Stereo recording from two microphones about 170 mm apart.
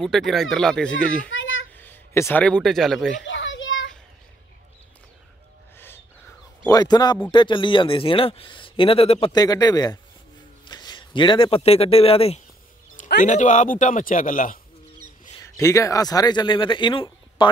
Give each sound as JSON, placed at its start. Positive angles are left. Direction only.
{"t": 0.0, "sound": "speech", "side_deg": 0}
{"t": 3.3, "sound": "children playing", "side_deg": 90}
{"t": 6.6, "sound": "speech", "side_deg": 20}
{"t": 9.3, "sound": "a man's voice", "side_deg": 20}
{"t": 13.2, "sound": "a man's voice", "side_deg": 50}
{"t": 15.4, "sound": "a man's voice", "side_deg": 20}